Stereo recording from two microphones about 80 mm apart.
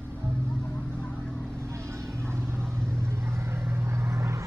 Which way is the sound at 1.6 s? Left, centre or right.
Right.